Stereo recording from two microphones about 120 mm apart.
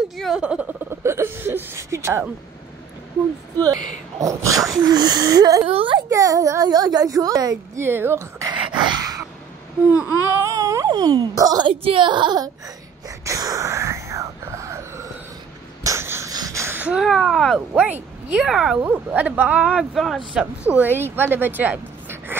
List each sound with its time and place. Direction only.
0.4 s a child's voice: 10° right (ahead or behind)
3.5 s a child's voice: 30° right (ahead or behind)
5.7 s a child's voice: 50° right (ahead or behind)
5.9 s a child's voice: 30° right (ahead or behind)
8.5 s a sound: 35° right (ahead or behind)
10.3 s speech: 25° right (ahead or behind)
11.7 s speech: 50° right (ahead or behind)
13.2 s whispering: 25° right (ahead or behind)
15.8 s wheeze: 25° right (ahead or behind); by 17.6 s centre (ahead or behind)
17.7 s speech: 15° right (ahead or behind)
20.6 s speech: 15° right (ahead or behind)